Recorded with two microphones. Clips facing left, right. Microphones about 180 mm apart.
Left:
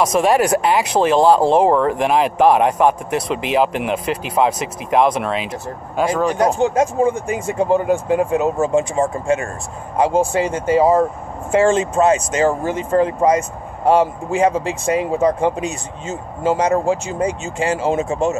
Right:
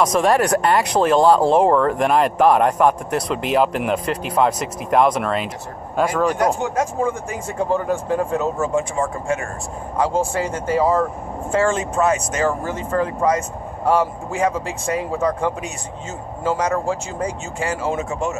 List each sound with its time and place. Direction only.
0.0 s speech: 5° left (ahead or behind)
6.4 s speech: 25° left (ahead or behind)